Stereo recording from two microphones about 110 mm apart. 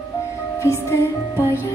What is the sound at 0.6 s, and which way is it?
Music, 25° left (ahead or behind).